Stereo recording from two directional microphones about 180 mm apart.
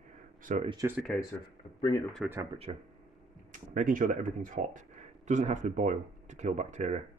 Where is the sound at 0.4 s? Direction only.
45° right (ahead or behind).